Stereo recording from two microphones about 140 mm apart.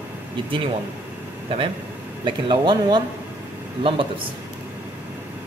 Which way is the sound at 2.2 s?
35° right (ahead or behind).